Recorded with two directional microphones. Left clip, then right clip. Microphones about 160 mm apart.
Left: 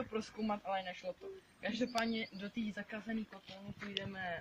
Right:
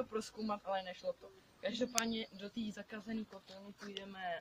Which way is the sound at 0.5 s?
20° right (ahead or behind).